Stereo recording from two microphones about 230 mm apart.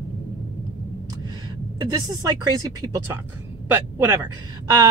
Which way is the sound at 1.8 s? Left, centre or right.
Centre.